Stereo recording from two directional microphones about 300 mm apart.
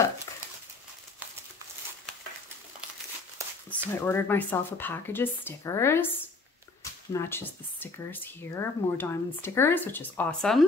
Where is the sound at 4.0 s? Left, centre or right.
Centre.